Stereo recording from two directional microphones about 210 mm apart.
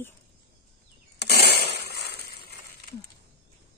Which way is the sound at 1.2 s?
50° left (ahead or behind).